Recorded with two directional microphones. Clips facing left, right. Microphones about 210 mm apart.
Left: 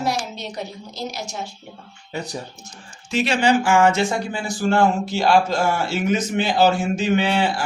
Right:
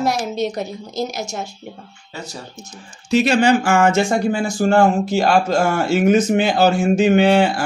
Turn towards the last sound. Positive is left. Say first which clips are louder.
# right 6 dB
turn(degrees=-50)  # may be behind; listen again after turning